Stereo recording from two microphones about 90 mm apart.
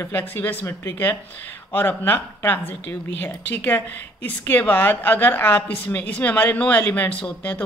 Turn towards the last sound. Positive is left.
turn(degrees=15)  # may be behind; listen again after turning